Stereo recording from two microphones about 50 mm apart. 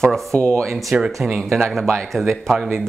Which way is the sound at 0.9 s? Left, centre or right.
Right.